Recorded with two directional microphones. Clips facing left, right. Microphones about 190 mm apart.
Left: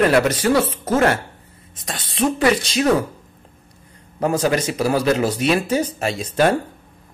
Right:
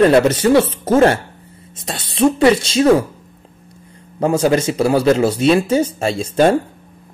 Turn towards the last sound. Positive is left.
turn(degrees=-30)  # may be behind; listen again after turning